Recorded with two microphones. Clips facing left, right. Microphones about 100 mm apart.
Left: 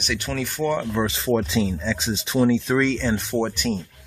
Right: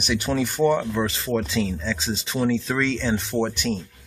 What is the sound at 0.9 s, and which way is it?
Speech, 10° left (ahead or behind).